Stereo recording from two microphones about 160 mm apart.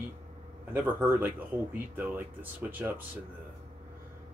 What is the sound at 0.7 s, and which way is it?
Speech, 10° right (ahead or behind).